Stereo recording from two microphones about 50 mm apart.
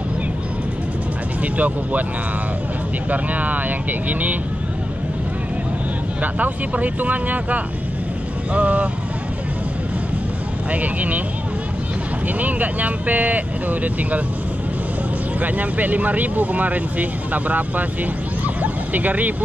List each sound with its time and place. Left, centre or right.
1.4 s speech: right
3.1 s speech: right
6.2 s speech: right
10.7 s speech: right
12.4 s speech: right
15.4 s speech: right